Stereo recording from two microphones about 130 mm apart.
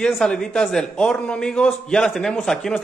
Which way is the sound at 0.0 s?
5° left (ahead or behind).